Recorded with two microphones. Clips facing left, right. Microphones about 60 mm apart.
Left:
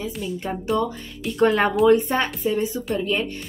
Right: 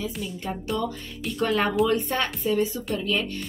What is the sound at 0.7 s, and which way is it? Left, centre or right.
Speech, centre.